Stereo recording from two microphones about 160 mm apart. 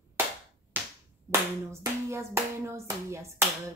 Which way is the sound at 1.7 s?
20° right (ahead or behind).